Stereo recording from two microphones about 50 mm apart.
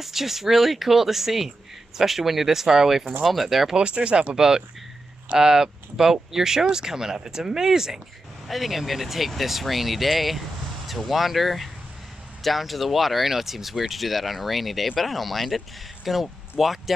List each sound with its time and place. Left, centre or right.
0.0 s speech: centre
3.7 s speech: centre